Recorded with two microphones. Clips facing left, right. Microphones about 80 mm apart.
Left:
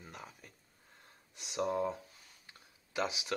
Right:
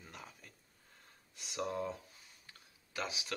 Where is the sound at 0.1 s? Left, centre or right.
Centre.